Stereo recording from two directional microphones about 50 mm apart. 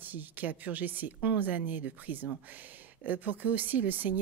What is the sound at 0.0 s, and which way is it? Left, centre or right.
A woman's voice, right.